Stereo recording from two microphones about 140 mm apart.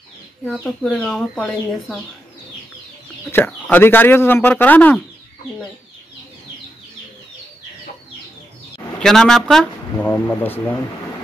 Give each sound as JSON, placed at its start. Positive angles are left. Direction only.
{"t": 0.5, "sound": "speech", "side_deg": 0}
{"t": 3.3, "sound": "speech", "side_deg": 15}
{"t": 9.0, "sound": "speech", "side_deg": 5}
{"t": 9.9, "sound": "speech", "side_deg": 15}